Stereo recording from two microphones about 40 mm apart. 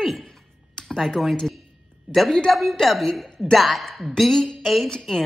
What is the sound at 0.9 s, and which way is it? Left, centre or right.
Speech, centre.